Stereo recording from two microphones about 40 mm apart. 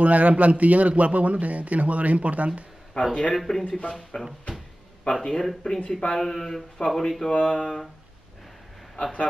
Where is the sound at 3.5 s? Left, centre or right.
Centre.